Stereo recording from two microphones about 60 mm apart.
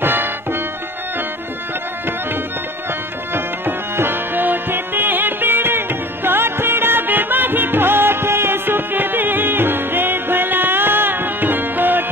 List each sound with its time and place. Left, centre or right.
0.0 s music: right
3.3 s music: right